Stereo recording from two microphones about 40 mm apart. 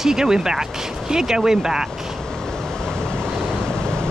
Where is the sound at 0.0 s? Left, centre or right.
Centre.